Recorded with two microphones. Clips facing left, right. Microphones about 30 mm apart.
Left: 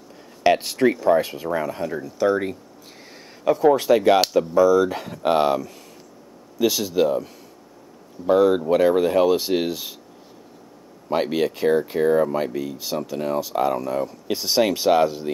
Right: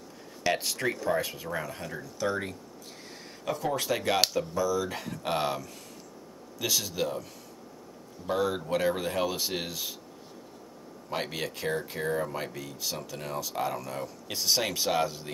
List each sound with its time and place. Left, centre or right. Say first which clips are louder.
0.4 s a sound: left 10 dB; left
0.7 s speech: left 11 dB; centre
3.6 s speech: left 13 dB; left
8.3 s speech: left 12 dB; centre
11.1 s speech: left 12 dB; centre